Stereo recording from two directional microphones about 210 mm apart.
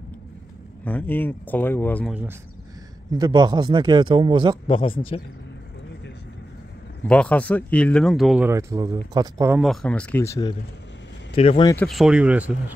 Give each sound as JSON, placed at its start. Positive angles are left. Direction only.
{"t": 0.8, "sound": "speech", "side_deg": 10}
{"t": 3.1, "sound": "speech", "side_deg": -20}
{"t": 4.6, "sound": "speech", "side_deg": 25}
{"t": 7.1, "sound": "speech", "side_deg": 5}
{"t": 8.5, "sound": "speech", "side_deg": -15}
{"t": 9.6, "sound": "speech", "side_deg": 0}
{"t": 11.3, "sound": "speech", "side_deg": 25}
{"t": 11.7, "sound": "speech", "side_deg": 5}